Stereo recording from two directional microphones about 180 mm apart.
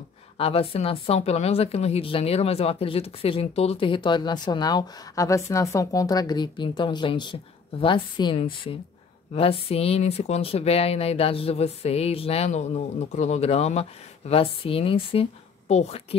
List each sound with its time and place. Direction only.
0.4 s speech: 35° left (ahead or behind)